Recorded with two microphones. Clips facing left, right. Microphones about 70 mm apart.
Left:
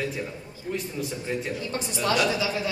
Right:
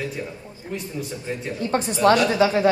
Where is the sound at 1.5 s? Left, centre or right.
Right.